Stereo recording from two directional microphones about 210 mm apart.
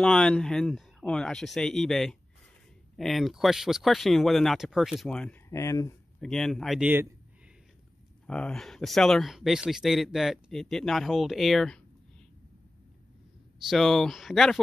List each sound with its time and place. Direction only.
0.0 s speech: 5° left (ahead or behind)
6.2 s speech: centre (ahead or behind)
8.3 s speech: 5° left (ahead or behind)
13.7 s speech: centre (ahead or behind)